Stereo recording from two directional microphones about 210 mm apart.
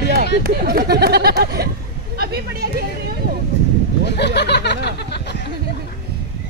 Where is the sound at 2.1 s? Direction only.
45° right (ahead or behind).